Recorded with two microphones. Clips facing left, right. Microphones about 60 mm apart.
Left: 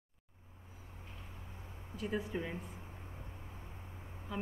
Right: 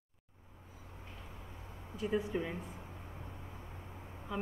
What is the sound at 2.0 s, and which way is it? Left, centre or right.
Speech, centre.